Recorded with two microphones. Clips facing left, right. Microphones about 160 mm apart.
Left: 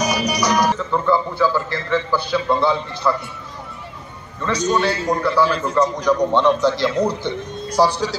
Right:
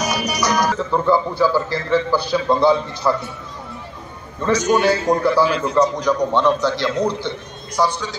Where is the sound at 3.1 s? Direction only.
25° right (ahead or behind).